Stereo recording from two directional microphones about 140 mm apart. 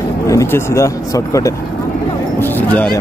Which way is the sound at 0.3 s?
20° left (ahead or behind).